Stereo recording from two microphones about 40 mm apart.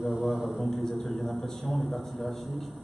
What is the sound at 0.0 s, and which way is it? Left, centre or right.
Speech, centre.